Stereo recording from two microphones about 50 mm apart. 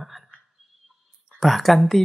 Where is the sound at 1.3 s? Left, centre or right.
Centre.